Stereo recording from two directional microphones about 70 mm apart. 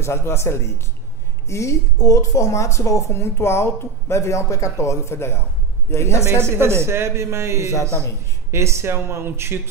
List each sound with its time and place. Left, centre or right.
0.0 s speech: left
6.2 s a man's voice: right